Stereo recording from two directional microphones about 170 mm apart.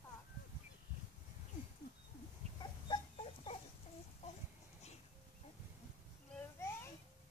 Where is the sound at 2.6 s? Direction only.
30° left (ahead or behind).